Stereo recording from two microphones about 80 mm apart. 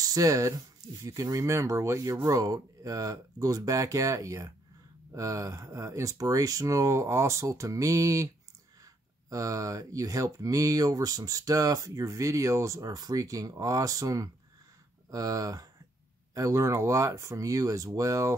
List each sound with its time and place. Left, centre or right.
0.0 s speech: right